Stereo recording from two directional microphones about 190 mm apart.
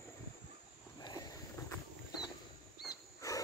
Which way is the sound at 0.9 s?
20° left (ahead or behind).